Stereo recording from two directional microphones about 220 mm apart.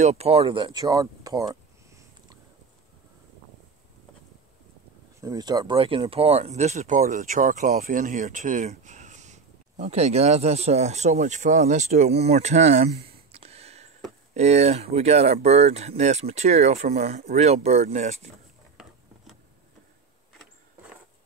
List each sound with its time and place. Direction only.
0.0 s speech: 30° right (ahead or behind)
5.2 s speech: 20° right (ahead or behind)
13.3 s a sound: 30° right (ahead or behind)
14.3 s speech: 30° right (ahead or behind)